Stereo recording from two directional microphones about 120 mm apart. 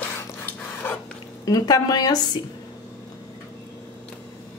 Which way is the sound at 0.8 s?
15° left (ahead or behind).